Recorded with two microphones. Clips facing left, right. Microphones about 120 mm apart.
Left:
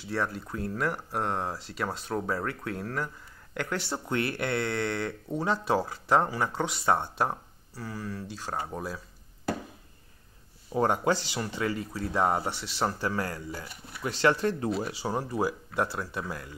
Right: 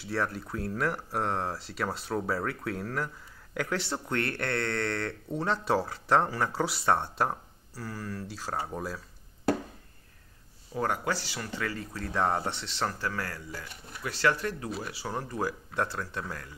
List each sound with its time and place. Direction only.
0.0 s speech: centre (ahead or behind)
10.7 s speech: 25° left (ahead or behind)